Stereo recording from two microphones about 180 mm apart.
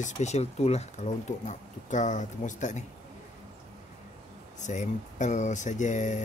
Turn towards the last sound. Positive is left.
turn(degrees=40)  # may be behind; listen again after turning